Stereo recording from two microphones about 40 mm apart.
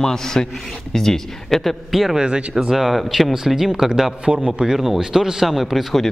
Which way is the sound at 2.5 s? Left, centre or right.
Centre.